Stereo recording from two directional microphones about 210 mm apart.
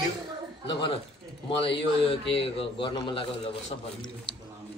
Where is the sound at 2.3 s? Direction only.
25° left (ahead or behind).